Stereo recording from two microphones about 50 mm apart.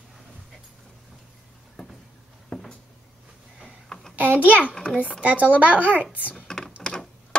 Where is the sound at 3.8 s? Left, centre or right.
Centre.